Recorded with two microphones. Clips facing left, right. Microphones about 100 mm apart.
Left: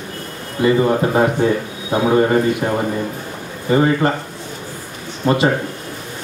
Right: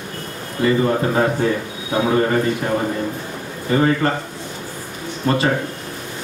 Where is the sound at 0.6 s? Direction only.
20° left (ahead or behind).